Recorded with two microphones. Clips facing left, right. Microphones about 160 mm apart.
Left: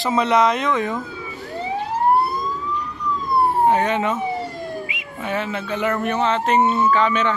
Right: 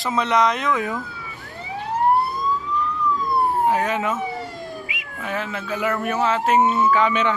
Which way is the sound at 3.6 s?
Centre (ahead or behind).